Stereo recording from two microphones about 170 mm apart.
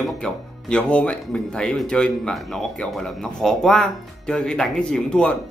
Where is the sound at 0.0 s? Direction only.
5° left (ahead or behind).